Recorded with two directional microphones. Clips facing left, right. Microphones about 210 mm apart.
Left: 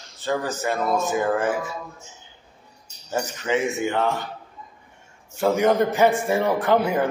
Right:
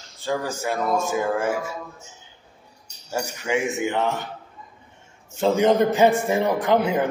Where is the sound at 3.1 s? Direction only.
10° right (ahead or behind).